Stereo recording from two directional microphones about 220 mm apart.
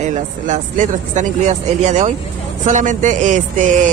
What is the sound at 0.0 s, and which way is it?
Speech, 35° right (ahead or behind).